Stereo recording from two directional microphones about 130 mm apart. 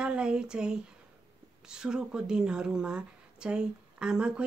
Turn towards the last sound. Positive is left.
turn(degrees=-5)  # may be behind; listen again after turning